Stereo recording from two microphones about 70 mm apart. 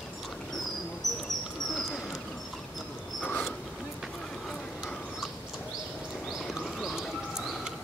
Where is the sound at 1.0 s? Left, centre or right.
Right.